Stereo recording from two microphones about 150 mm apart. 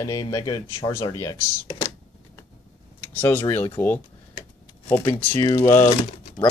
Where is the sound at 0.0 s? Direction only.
25° left (ahead or behind).